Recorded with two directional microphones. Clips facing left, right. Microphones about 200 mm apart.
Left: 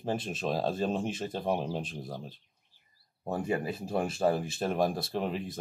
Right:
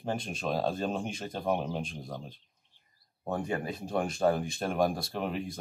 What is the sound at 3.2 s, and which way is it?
Speech, 5° left (ahead or behind).